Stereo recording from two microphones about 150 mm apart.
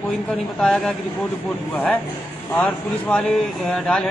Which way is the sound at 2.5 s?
5° left (ahead or behind).